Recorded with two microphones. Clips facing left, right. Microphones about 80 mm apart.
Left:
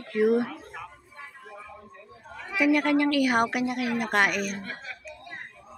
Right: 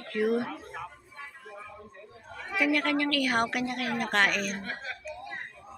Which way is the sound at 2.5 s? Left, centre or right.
Centre.